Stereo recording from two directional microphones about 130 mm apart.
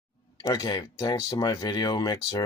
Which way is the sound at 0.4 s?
30° left (ahead or behind).